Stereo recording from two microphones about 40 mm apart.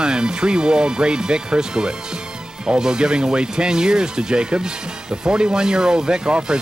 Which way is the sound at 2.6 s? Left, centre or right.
Centre.